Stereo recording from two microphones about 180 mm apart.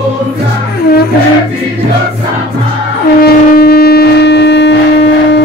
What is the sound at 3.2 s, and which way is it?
Shofar, 60° left (ahead or behind).